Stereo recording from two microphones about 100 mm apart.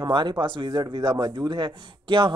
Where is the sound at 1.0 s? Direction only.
35° right (ahead or behind).